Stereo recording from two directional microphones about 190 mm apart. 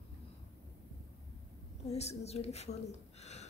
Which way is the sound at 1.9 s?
35° left (ahead or behind).